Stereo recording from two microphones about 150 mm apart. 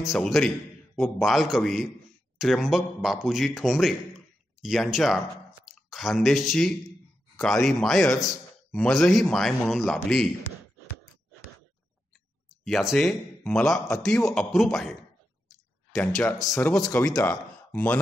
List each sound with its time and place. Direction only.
0.0 s a man's voice: centre (ahead or behind)
12.6 s a man's voice: centre (ahead or behind)
16.5 s speech: 20° left (ahead or behind)